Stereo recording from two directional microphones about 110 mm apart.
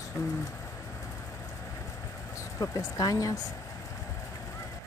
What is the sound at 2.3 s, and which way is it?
Speech, 30° left (ahead or behind).